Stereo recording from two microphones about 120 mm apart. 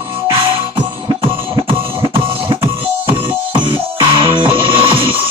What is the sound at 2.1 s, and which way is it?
Music, 50° right (ahead or behind).